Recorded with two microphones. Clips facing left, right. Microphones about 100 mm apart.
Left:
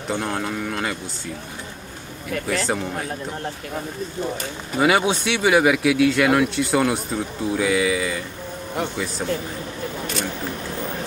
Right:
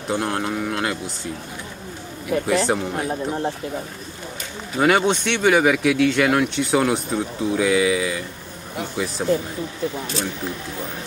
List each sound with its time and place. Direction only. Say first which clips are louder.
0.1 s speech: right 2 dB; 5° right (ahead or behind)
2.4 s speech: right 2 dB; 5° right (ahead or behind)
3.1 s speech: right 5 dB; 20° right (ahead or behind)
4.7 s speech: right 1 dB; 5° left (ahead or behind)
9.2 s speech: right 5 dB; 5° right (ahead or behind)